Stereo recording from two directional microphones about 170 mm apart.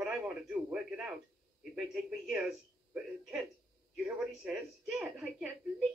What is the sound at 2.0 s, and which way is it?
A man's voice, 5° right (ahead or behind).